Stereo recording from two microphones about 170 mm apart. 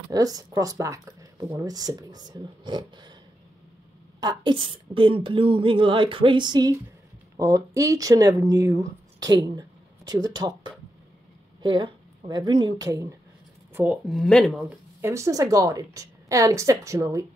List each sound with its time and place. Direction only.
0.1 s speech: 20° right (ahead or behind)
4.2 s a woman's voice: 25° right (ahead or behind)
14.0 s speech: centre (ahead or behind)
14.6 s speech: 10° right (ahead or behind)